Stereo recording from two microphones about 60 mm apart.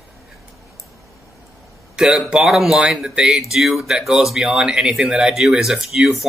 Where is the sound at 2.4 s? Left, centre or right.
Centre.